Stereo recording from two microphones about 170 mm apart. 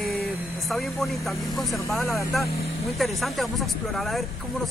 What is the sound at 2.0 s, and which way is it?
Speech, 15° left (ahead or behind).